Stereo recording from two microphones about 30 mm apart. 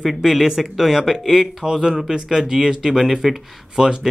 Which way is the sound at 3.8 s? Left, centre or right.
Centre.